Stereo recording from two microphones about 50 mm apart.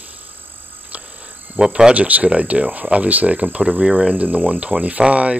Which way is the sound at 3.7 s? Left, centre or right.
Centre.